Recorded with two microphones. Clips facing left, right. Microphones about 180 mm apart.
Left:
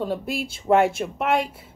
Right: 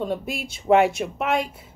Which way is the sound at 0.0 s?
Centre (ahead or behind).